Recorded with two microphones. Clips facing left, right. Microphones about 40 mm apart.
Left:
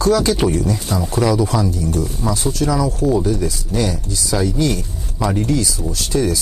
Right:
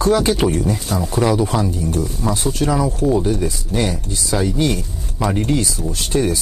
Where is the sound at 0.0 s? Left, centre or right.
Right.